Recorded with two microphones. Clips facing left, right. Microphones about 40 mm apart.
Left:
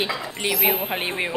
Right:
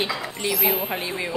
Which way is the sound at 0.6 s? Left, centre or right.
Left.